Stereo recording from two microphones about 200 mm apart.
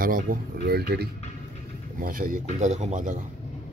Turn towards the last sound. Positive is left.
turn(degrees=-40)  # may be behind; listen again after turning